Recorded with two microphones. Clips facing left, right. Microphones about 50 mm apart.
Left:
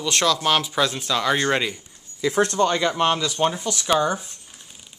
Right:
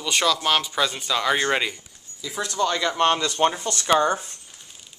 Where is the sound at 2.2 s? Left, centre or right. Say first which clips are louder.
Left 10 dB; left.